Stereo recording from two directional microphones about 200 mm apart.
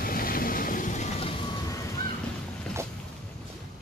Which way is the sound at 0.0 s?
45° left (ahead or behind).